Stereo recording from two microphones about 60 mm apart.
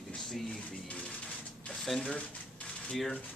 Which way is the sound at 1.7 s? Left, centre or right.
Centre.